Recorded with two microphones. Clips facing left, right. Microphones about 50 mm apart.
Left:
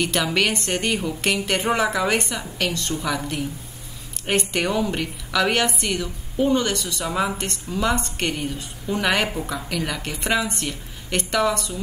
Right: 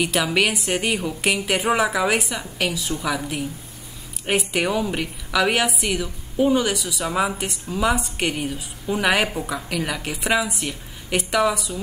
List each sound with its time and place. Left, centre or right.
0.0 s a woman's voice: centre